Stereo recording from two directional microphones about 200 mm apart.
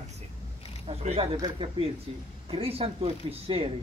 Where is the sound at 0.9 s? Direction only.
30° right (ahead or behind).